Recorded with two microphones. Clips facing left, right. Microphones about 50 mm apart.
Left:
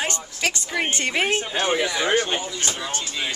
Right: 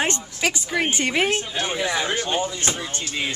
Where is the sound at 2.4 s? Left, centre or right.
Right.